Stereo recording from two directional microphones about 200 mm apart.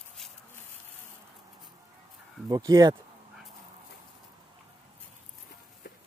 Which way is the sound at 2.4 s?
15° right (ahead or behind).